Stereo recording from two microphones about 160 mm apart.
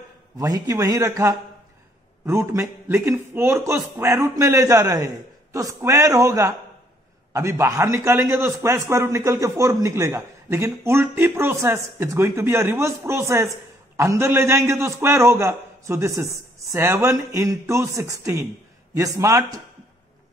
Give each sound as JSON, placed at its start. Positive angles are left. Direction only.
{"t": 0.4, "sound": "a man's voice", "side_deg": -20}